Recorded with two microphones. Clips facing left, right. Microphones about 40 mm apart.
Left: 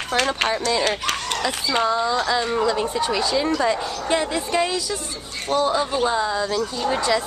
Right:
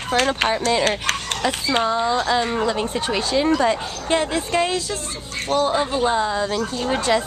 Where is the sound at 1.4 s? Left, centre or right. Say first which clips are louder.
Right 1 dB; right.